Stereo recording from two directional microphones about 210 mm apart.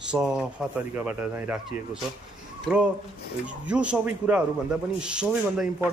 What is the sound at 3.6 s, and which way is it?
A man's voice, 5° right (ahead or behind).